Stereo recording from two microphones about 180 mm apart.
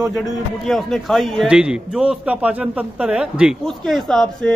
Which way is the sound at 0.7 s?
Centre (ahead or behind).